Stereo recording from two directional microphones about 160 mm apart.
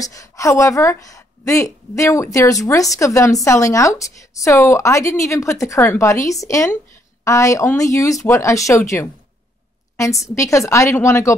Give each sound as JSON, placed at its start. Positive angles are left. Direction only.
{"t": 0.0, "sound": "a woman's voice", "side_deg": 20}
{"t": 10.2, "sound": "a woman's voice", "side_deg": 20}